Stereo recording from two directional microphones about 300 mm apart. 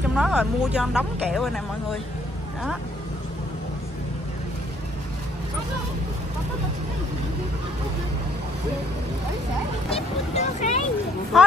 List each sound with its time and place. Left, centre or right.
0.1 s speech: centre
9.8 s speech: left
11.3 s speech: centre